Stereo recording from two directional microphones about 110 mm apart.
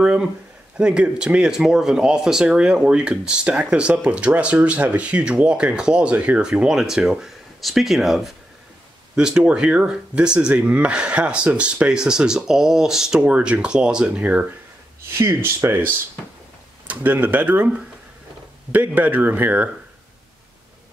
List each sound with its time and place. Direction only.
0.0 s speech: 10° right (ahead or behind)
15.1 s speech: 25° right (ahead or behind)